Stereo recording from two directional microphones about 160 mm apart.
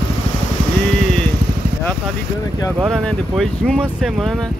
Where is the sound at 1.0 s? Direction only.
Centre (ahead or behind).